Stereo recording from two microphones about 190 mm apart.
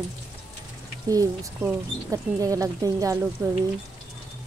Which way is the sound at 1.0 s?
20° right (ahead or behind).